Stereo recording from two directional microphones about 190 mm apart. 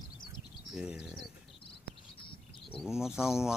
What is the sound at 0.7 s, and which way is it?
Speech, 5° right (ahead or behind).